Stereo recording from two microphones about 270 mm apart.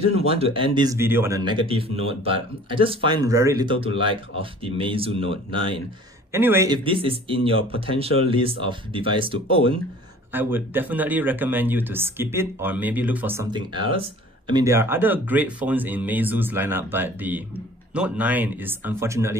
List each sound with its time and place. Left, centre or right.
0.1 s speech: right
6.3 s speech: centre
10.3 s speech: centre